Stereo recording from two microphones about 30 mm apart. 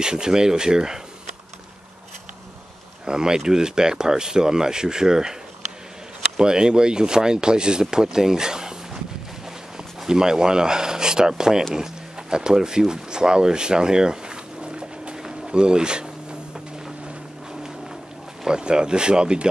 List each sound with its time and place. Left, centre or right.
0.0 s speech: right
3.1 s speech: right
6.3 s speech: right
10.0 s speech: right
11.7 s music: right
12.5 s speech: right
15.2 s a sound: right
18.5 s speech: right